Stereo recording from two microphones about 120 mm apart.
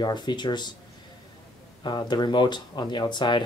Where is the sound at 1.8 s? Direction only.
40° left (ahead or behind).